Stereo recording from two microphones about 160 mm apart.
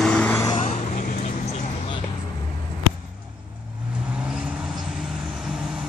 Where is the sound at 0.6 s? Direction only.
50° left (ahead or behind).